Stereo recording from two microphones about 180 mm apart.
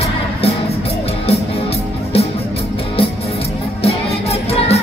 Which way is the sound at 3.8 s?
35° left (ahead or behind).